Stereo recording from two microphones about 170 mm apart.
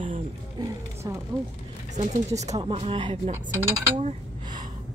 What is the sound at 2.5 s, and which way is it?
Speech, 30° right (ahead or behind).